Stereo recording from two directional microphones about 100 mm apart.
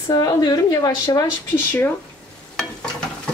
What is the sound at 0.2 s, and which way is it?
A woman's voice, 45° left (ahead or behind).